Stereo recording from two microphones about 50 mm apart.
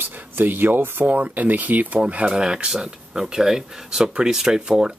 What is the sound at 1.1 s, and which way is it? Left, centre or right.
Speech, right.